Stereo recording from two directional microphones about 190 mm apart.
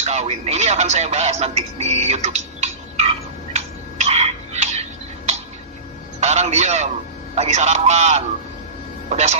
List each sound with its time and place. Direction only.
0.0 s speech: 35° right (ahead or behind)
3.5 s tick-tock: 35° right (ahead or behind)
6.2 s a man's voice: 35° right (ahead or behind)